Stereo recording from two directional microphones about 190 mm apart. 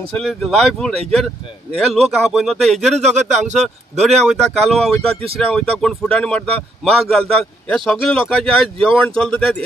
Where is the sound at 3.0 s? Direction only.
40° right (ahead or behind).